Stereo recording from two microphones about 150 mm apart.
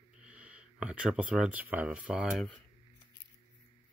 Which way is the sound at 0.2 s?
10° right (ahead or behind).